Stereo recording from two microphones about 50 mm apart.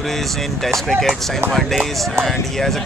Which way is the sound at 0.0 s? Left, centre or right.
Centre.